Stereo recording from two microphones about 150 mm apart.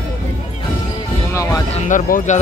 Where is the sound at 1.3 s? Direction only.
20° left (ahead or behind).